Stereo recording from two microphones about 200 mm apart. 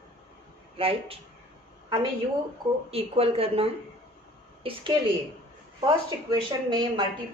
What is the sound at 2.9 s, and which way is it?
A woman's voice, 30° right (ahead or behind).